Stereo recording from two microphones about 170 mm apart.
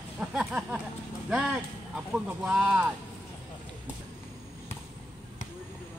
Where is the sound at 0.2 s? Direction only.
5° right (ahead or behind).